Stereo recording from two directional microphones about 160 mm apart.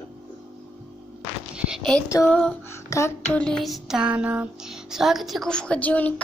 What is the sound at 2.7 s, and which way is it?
Music, 15° left (ahead or behind).